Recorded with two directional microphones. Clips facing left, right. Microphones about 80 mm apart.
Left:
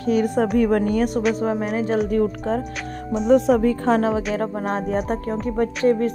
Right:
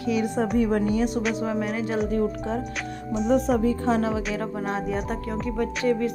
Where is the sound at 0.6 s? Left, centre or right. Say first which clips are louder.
Left 3 dB; left.